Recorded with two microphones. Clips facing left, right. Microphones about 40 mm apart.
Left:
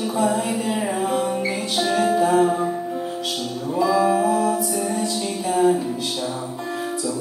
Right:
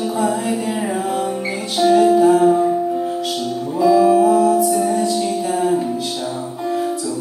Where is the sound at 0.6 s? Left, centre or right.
Centre.